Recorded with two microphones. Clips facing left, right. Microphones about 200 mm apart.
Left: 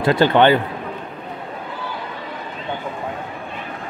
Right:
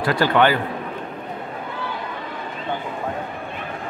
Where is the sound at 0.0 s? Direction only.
25° left (ahead or behind).